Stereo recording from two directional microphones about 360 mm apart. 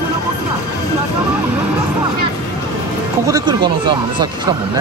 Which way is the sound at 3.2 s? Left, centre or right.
Centre.